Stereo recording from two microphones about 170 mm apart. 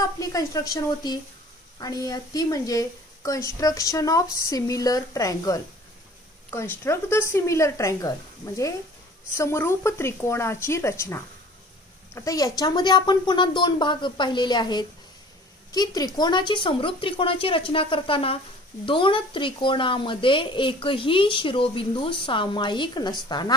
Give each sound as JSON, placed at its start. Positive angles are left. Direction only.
{"t": 0.2, "sound": "speech", "side_deg": 20}
{"t": 9.3, "sound": "speech", "side_deg": 15}